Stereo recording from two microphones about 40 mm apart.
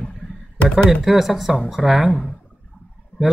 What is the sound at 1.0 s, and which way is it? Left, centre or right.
Speech, centre.